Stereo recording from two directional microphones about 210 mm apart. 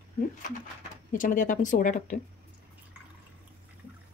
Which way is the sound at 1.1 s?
40° left (ahead or behind).